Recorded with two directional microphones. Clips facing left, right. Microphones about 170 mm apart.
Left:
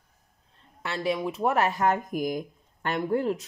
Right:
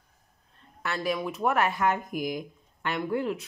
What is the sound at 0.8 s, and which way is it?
Speech, 25° left (ahead or behind).